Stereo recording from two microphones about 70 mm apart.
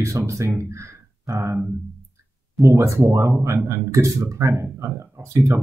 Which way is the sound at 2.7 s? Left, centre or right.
Right.